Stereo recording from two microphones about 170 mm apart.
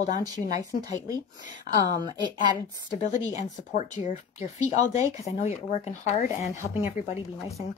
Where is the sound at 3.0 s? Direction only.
40° left (ahead or behind).